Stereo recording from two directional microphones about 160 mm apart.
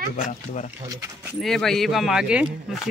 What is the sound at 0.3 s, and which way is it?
Speech, 50° left (ahead or behind).